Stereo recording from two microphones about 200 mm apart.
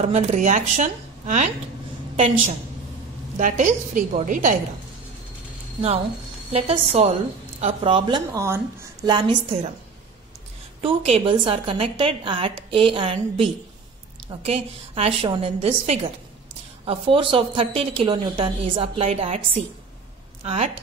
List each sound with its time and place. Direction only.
0.0 s a woman's voice: 35° right (ahead or behind)
3.3 s a woman's voice: 40° right (ahead or behind)
6.5 s a woman's voice: 30° right (ahead or behind)
8.3 s speech: 10° right (ahead or behind)
9.0 s a woman's voice: 25° right (ahead or behind)
10.8 s a woman's voice: 30° right (ahead or behind)
20.4 s a woman's voice: 30° right (ahead or behind)